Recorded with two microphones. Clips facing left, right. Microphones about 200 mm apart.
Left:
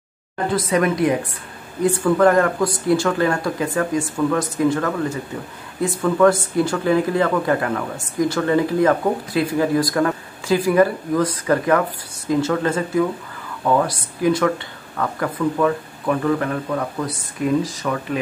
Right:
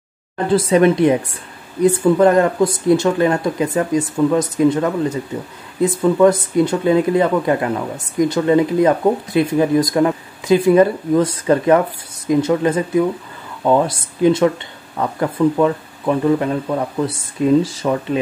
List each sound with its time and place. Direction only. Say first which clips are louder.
0.5 s speech: right 6 dB; 25° right (ahead or behind)